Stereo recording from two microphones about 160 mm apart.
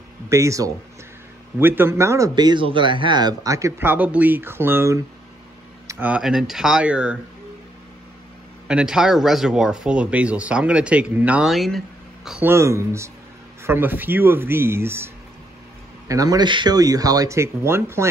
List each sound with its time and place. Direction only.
0.3 s speech: 20° right (ahead or behind)
8.6 s speech: 5° right (ahead or behind)
12.3 s speech: 10° right (ahead or behind)
16.1 s speech: 20° right (ahead or behind)